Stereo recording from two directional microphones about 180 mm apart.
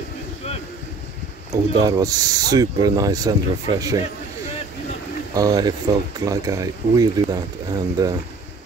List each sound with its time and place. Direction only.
1.5 s speech: 20° right (ahead or behind)
5.3 s speech: 20° right (ahead or behind)